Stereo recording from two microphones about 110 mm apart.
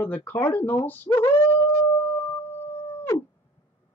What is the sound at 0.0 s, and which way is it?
Speech, 15° left (ahead or behind).